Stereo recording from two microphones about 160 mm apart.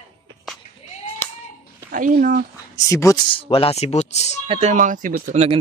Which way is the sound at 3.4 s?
35° left (ahead or behind).